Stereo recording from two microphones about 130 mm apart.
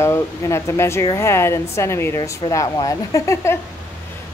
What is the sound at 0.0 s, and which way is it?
A woman's voice, 20° left (ahead or behind).